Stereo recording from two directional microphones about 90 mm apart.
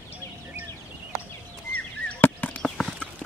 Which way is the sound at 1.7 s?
15° left (ahead or behind).